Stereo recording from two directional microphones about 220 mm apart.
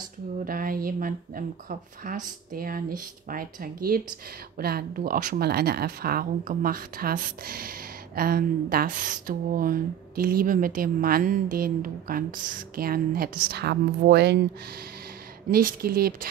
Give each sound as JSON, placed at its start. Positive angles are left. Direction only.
{"t": 0.5, "sound": "speech", "side_deg": -40}
{"t": 15.5, "sound": "speech", "side_deg": -40}